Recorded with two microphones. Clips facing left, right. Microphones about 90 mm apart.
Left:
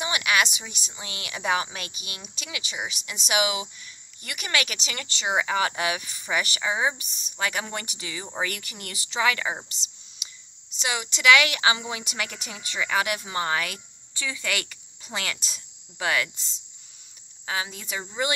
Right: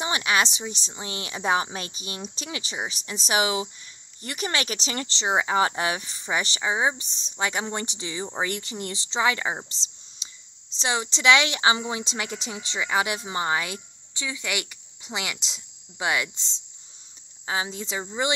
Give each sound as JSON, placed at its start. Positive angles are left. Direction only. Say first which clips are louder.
{"t": 0.0, "sound": "a woman's voice", "louder": "right 1 dB", "side_deg": -30}